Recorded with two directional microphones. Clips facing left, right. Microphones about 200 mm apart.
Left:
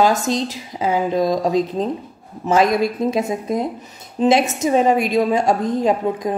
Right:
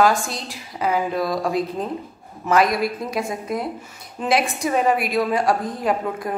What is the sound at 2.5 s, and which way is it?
Speech, 25° left (ahead or behind).